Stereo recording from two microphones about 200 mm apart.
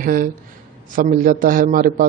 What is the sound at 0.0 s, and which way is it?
Speech, 45° right (ahead or behind).